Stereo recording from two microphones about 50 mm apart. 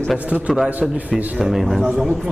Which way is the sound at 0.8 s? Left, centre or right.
Centre.